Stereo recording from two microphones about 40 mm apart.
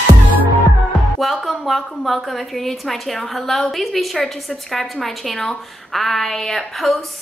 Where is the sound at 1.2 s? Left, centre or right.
Centre.